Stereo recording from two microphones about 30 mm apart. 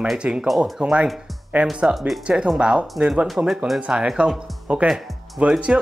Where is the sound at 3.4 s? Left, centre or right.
Right.